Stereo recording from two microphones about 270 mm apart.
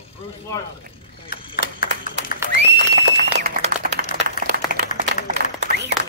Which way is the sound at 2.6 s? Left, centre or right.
Right.